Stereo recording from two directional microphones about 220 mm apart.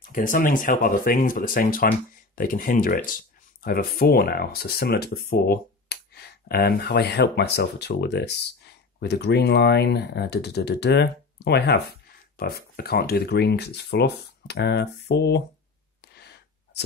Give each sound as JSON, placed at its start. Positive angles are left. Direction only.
{"t": 0.0, "sound": "speech", "side_deg": 40}